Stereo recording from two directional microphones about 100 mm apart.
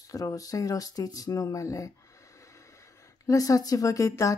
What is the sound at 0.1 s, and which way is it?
Speech, 35° left (ahead or behind).